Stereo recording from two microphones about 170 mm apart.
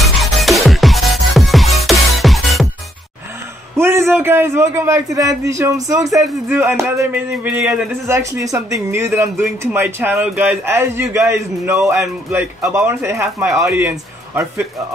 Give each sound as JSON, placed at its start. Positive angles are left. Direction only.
{"t": 0.0, "sound": "music", "side_deg": 0}
{"t": 3.7, "sound": "a man's voice", "side_deg": -15}